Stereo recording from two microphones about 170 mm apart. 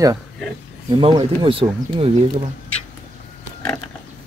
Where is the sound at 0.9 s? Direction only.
30° right (ahead or behind).